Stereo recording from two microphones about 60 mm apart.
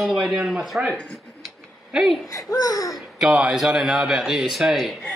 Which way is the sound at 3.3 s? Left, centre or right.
Centre.